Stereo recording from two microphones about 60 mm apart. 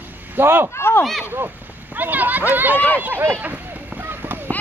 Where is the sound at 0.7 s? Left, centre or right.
Left.